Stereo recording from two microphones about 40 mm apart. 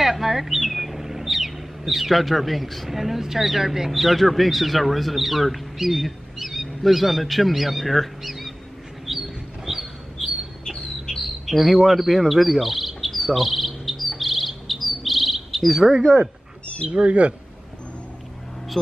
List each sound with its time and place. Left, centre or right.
0.0 s speech: centre
10.6 s bird: centre
11.4 s bird: centre
15.8 s speech: centre
16.8 s speech: right